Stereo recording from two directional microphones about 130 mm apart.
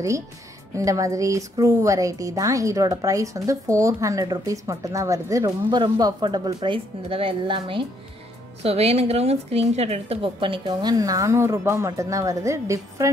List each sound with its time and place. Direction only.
0.7 s speech: 25° right (ahead or behind); by 7.8 s 40° right (ahead or behind)
8.6 s speech: 50° right (ahead or behind); by 13.1 s 25° right (ahead or behind)